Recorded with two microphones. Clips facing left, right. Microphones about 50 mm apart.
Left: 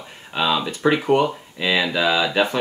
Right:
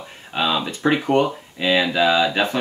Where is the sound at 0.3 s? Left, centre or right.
Centre.